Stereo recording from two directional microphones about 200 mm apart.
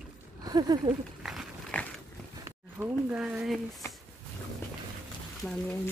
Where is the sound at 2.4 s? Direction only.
10° right (ahead or behind).